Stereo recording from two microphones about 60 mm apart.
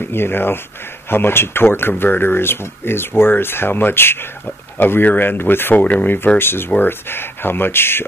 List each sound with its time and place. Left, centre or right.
0.0 s speech: left
6.1 s speech: left